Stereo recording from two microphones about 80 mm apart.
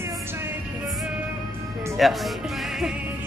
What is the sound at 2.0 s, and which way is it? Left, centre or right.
Speech, centre.